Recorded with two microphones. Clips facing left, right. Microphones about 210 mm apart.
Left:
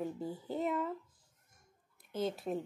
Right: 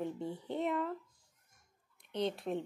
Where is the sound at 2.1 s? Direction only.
5° left (ahead or behind).